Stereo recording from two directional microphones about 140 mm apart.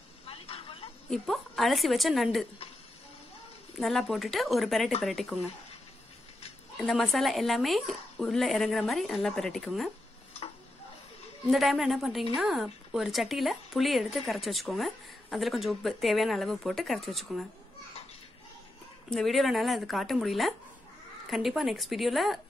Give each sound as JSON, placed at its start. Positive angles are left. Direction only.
{"t": 0.3, "sound": "vehicle", "side_deg": 45}
{"t": 1.1, "sound": "speech", "side_deg": 0}
{"t": 3.8, "sound": "speech", "side_deg": 0}
{"t": 6.8, "sound": "speech", "side_deg": 0}
{"t": 11.5, "sound": "speech", "side_deg": 0}
{"t": 19.0, "sound": "speech", "side_deg": 0}